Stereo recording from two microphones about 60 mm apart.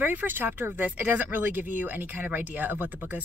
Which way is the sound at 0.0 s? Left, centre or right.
Right.